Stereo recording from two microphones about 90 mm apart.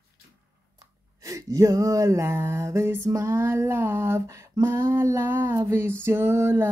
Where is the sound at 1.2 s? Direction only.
35° right (ahead or behind).